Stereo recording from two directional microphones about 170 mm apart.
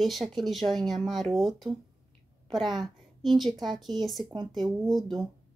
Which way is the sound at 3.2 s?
Centre (ahead or behind).